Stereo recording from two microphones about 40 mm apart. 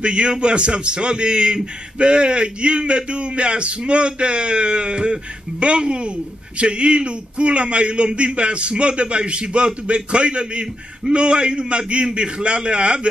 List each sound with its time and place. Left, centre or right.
0.0 s a man's voice: right